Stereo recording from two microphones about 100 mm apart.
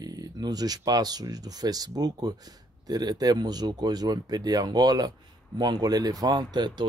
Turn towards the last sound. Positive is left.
turn(degrees=-45)  # may be behind; listen again after turning